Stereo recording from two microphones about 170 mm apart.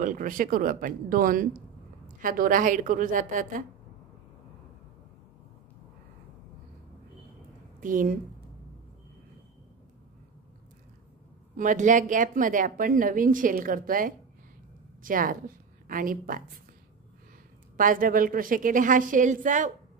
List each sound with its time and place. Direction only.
0.0 s speech: 50° right (ahead or behind)
7.8 s speech: 50° right (ahead or behind)
11.5 s a woman's voice: 50° right (ahead or behind)
17.7 s speech: 55° right (ahead or behind)